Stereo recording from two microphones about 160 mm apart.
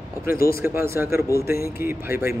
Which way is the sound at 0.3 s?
65° left (ahead or behind).